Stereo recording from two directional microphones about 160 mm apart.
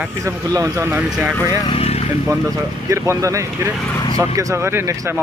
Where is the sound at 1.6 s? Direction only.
40° left (ahead or behind).